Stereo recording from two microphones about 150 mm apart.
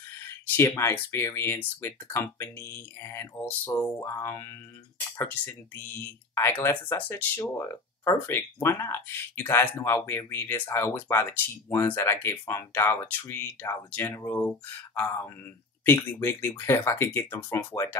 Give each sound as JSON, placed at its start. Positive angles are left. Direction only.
{"t": 0.5, "sound": "speech", "side_deg": 15}
{"t": 15.8, "sound": "speech", "side_deg": 15}